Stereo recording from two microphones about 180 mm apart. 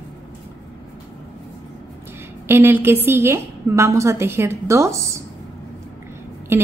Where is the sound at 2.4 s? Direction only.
10° right (ahead or behind).